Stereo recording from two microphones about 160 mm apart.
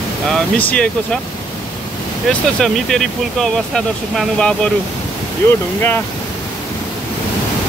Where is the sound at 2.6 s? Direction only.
Centre (ahead or behind).